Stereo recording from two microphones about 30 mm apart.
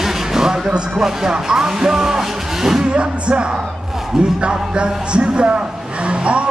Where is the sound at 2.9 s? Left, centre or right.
Right.